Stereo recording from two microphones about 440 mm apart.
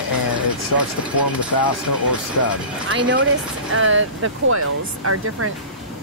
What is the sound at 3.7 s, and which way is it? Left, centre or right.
Speech, right.